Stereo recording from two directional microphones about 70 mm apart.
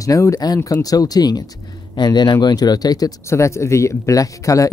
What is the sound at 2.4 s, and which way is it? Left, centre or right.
Speech, left.